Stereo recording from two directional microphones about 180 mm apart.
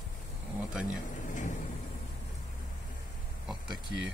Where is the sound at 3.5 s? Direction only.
5° right (ahead or behind).